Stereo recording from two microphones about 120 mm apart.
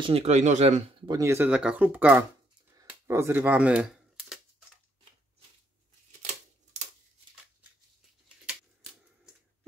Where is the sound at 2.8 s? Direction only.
20° right (ahead or behind); by 4.3 s 5° right (ahead or behind).